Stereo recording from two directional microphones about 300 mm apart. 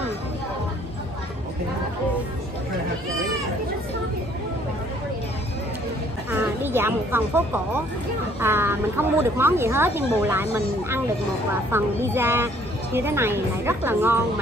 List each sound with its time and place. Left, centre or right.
6.3 s speech: centre